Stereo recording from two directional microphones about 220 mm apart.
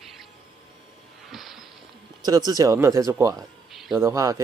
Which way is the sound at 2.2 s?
15° right (ahead or behind).